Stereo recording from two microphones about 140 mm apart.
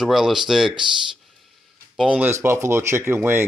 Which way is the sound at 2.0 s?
10° right (ahead or behind).